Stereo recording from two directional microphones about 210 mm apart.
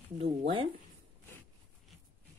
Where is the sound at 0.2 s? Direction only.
30° right (ahead or behind).